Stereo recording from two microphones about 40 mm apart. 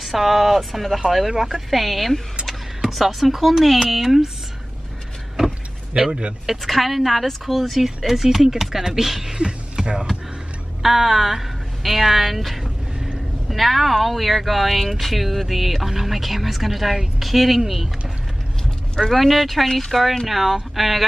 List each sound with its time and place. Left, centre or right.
0.0 s speech: centre
5.9 s a man's voice: right
6.4 s speech: centre
9.4 s a sound: centre
10.8 s speech: centre
18.9 s speech: centre